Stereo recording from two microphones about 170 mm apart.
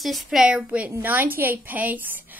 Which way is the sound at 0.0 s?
Centre (ahead or behind).